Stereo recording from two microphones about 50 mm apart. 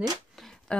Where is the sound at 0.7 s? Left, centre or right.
Left.